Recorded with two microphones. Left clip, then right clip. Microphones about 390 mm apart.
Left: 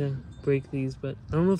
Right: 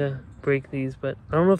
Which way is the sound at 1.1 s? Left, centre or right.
Centre.